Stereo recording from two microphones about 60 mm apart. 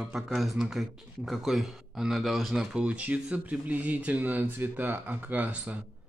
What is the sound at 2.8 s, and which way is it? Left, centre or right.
Speech, right.